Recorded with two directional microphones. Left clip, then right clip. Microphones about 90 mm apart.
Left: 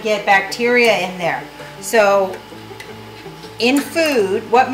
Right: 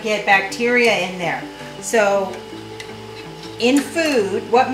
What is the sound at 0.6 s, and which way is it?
A woman's voice, 30° left (ahead or behind).